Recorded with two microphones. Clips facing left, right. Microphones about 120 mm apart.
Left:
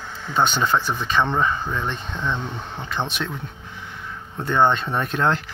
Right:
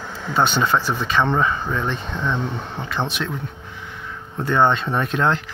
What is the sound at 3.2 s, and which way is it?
Speech, 25° left (ahead or behind).